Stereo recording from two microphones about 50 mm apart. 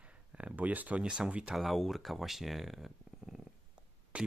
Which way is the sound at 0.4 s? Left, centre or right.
Right.